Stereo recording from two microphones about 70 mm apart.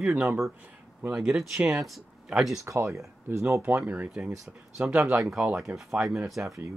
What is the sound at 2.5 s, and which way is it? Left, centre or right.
Speech, right.